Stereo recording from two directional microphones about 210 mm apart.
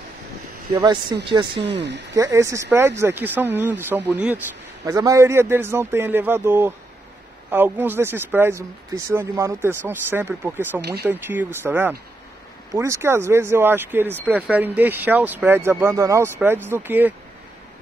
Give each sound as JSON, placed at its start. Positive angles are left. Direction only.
{"t": 0.7, "sound": "speech", "side_deg": -20}
{"t": 1.8, "sound": "speech", "side_deg": -55}
{"t": 2.1, "sound": "speech", "side_deg": -15}
{"t": 10.8, "sound": "speech", "side_deg": -50}
{"t": 11.1, "sound": "speech", "side_deg": -10}